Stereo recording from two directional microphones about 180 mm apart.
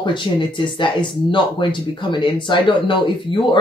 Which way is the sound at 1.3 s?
25° left (ahead or behind).